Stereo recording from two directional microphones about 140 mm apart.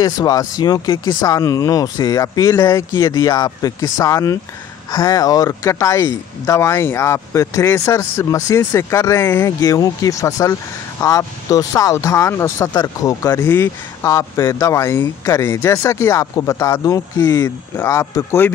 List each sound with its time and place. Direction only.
0.0 s speech: 25° left (ahead or behind)